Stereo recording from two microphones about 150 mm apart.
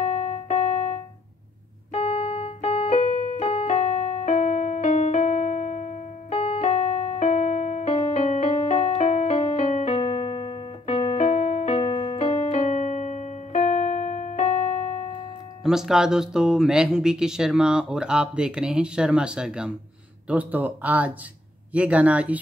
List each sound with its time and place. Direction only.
0.0 s keyboard: 45° left (ahead or behind)
3.0 s keyboard: 60° left (ahead or behind)
3.4 s keyboard: 45° left (ahead or behind)
6.3 s keyboard: 40° left (ahead or behind); by 11.7 s 60° left (ahead or behind)
11.7 s keyboard: 40° left (ahead or behind)
15.6 s speech: 5° right (ahead or behind)